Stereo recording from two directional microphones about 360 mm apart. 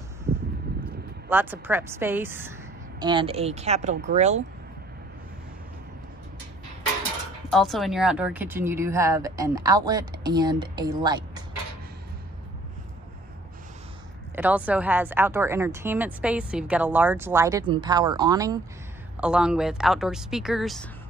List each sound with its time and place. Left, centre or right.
1.3 s speech: centre
7.5 s speech: centre
14.3 s speech: centre